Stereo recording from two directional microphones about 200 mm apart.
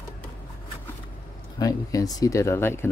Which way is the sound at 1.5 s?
15° left (ahead or behind).